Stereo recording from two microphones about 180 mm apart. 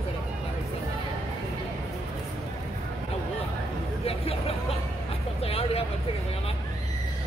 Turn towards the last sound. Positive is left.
turn(degrees=35)  # may be behind; listen again after turning